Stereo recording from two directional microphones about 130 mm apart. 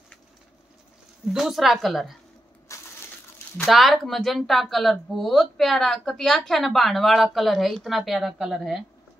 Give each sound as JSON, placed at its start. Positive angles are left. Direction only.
{"t": 1.3, "sound": "speech", "side_deg": 0}
{"t": 2.7, "sound": "crushing", "side_deg": 25}
{"t": 3.6, "sound": "speech", "side_deg": 0}